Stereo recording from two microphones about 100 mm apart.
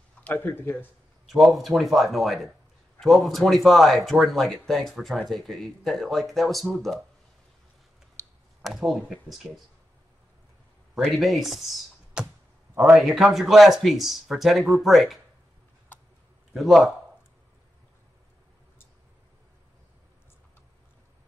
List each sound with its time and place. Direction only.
0.2 s speech: 20° left (ahead or behind)
1.2 s speech: centre (ahead or behind)
8.6 s speech: centre (ahead or behind)
11.1 s speech: centre (ahead or behind)
16.5 s speech: centre (ahead or behind)